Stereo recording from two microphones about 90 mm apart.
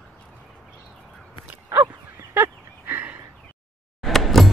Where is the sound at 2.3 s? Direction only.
20° right (ahead or behind).